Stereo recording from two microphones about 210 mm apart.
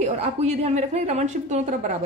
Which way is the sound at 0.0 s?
30° right (ahead or behind).